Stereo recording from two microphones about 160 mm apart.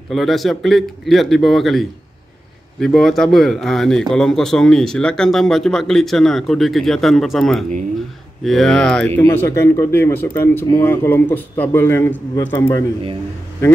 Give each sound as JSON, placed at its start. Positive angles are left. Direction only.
{"t": 0.1, "sound": "a man's voice", "side_deg": 0}